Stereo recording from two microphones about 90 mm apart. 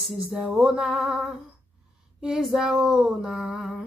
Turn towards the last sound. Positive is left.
turn(degrees=-5)  # may be behind; listen again after turning